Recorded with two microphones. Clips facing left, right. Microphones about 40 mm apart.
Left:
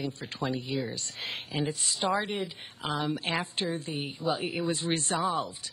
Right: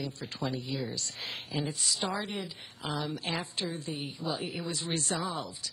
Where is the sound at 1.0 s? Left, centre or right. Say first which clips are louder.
Left 2 dB; left.